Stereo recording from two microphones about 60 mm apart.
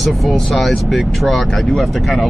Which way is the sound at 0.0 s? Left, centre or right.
Centre.